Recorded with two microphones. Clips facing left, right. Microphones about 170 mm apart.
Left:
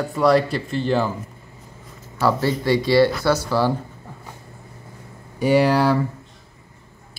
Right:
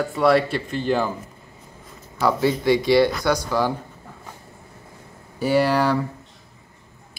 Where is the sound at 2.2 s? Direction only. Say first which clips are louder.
Even; 20° right (ahead or behind).